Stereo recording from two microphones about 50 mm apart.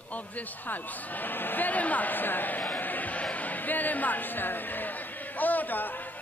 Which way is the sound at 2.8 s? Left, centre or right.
Left.